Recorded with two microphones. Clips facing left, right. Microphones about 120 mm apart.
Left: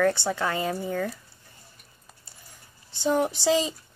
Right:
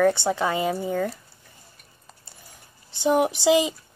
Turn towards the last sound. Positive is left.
turn(degrees=-15)  # may be behind; listen again after turning